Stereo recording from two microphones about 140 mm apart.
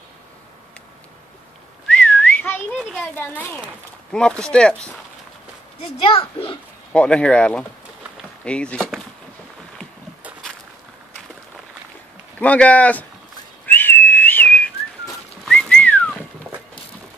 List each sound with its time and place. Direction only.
1.9 s whistling: 10° left (ahead or behind)
3.2 s speech: 15° left (ahead or behind)
5.8 s a child's voice: 40° left (ahead or behind)
6.9 s speech: 10° left (ahead or behind)
12.4 s speech: 10° left (ahead or behind)
13.7 s whistling: 15° left (ahead or behind)